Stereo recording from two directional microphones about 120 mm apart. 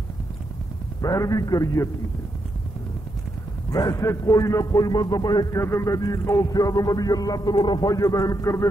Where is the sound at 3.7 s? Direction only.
30° left (ahead or behind).